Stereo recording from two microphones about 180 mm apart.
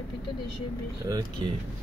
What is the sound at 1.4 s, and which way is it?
Speech, 25° right (ahead or behind).